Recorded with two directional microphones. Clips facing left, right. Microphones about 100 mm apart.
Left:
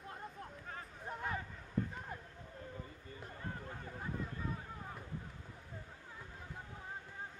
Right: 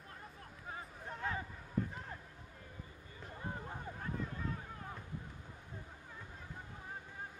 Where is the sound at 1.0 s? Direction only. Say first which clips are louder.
Even; 10° left (ahead or behind).